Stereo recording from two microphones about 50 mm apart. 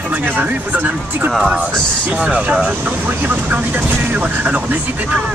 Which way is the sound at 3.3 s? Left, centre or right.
Right.